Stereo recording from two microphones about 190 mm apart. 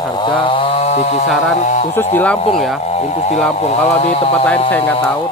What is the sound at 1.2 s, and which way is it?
Speech, centre (ahead or behind).